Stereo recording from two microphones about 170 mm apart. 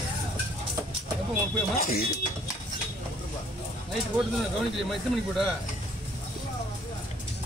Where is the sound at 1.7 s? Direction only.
60° left (ahead or behind).